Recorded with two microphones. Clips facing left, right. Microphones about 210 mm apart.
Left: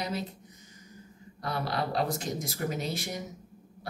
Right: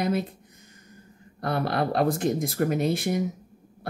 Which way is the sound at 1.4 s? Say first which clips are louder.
Right 6 dB; 55° right (ahead or behind).